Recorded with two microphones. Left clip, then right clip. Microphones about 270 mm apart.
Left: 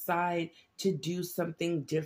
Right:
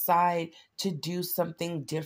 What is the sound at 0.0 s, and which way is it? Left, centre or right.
Speech, right.